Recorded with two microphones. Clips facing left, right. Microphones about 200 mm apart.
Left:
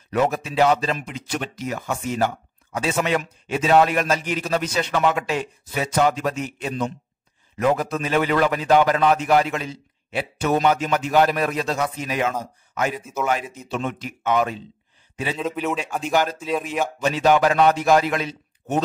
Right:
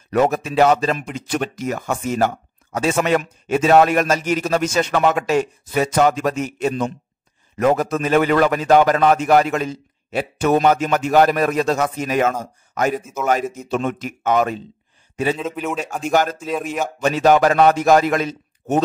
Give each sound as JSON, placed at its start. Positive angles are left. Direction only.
{"t": 0.1, "sound": "speech", "side_deg": -45}
{"t": 15.3, "sound": "a man's voice", "side_deg": 0}
{"t": 16.0, "sound": "speech", "side_deg": -45}
{"t": 16.3, "sound": "a man's voice", "side_deg": 0}
{"t": 16.8, "sound": "speech", "side_deg": -45}